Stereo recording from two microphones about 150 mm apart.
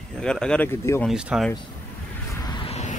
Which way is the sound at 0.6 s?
15° left (ahead or behind).